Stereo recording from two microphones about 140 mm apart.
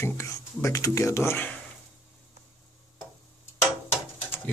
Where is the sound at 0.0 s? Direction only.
20° left (ahead or behind).